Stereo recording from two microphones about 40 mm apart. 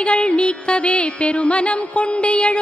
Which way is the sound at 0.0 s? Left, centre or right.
Left.